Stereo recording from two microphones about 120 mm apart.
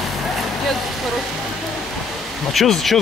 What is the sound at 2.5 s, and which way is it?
Speech, centre (ahead or behind).